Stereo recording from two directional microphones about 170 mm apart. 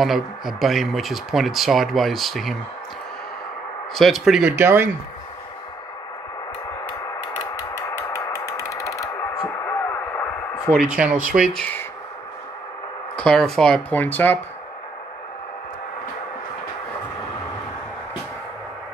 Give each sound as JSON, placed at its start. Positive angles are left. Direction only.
{"t": 0.0, "sound": "speech", "side_deg": 0}
{"t": 3.9, "sound": "speech", "side_deg": 0}
{"t": 4.6, "sound": "speech", "side_deg": -15}
{"t": 8.6, "sound": "a sound", "side_deg": 20}
{"t": 10.7, "sound": "speech", "side_deg": -5}
{"t": 13.1, "sound": "speech", "side_deg": 5}